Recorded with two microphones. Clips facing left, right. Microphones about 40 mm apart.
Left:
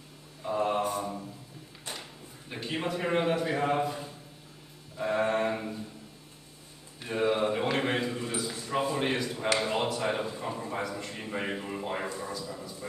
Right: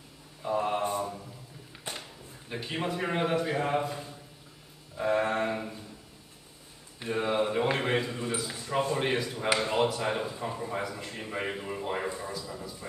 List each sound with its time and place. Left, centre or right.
0.4 s mantra: centre
1.9 s a sound: right
2.5 s a man's voice: centre
4.9 s a man's voice: centre
7.1 s a man's voice: centre